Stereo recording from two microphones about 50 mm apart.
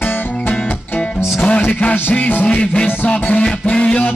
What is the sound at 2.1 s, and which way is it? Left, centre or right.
Music, left.